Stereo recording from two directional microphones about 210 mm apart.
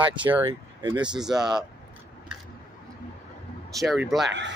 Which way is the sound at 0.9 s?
20° right (ahead or behind).